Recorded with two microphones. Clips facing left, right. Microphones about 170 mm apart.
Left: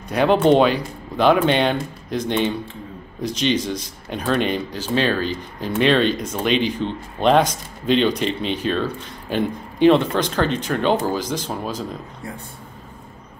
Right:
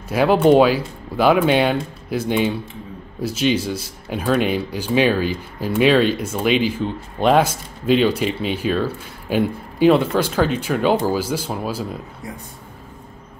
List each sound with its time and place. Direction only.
0.1 s speech: 5° right (ahead or behind)